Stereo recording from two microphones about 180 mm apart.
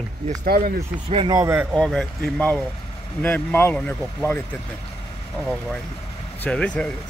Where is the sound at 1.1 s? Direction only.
25° right (ahead or behind).